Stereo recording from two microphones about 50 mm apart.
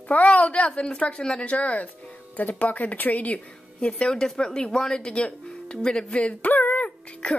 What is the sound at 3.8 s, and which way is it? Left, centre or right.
Speech, centre.